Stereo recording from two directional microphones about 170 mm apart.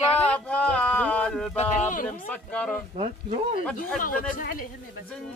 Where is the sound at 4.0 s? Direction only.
55° left (ahead or behind).